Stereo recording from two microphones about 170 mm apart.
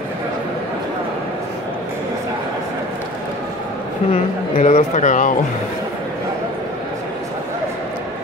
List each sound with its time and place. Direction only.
4.1 s speech: 40° left (ahead or behind)